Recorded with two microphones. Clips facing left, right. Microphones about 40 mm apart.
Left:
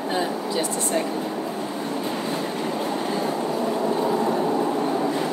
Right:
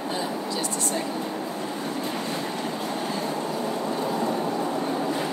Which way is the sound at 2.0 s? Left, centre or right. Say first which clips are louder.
Left 3 dB; centre.